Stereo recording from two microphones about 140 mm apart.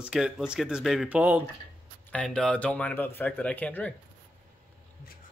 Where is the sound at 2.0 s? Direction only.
5° left (ahead or behind).